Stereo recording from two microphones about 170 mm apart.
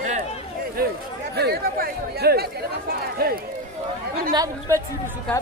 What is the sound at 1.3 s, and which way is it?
Speech, 70° right (ahead or behind).